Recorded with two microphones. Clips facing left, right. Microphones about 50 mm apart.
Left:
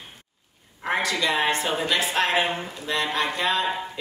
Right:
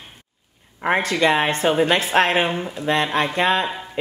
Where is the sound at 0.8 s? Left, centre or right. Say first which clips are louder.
Right 6 dB; right.